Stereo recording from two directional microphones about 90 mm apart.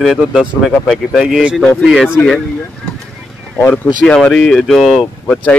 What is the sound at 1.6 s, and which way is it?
Speech, 10° left (ahead or behind).